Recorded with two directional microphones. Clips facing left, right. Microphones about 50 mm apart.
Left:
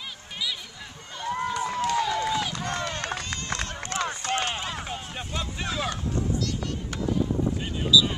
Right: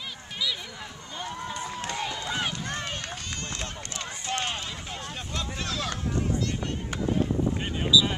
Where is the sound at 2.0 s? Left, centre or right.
Left.